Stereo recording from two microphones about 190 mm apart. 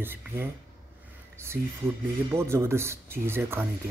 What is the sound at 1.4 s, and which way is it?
Speech, 15° right (ahead or behind).